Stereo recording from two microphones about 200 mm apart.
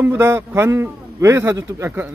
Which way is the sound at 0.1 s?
10° right (ahead or behind).